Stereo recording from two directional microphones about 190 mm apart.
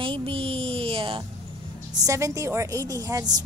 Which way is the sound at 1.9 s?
15° right (ahead or behind).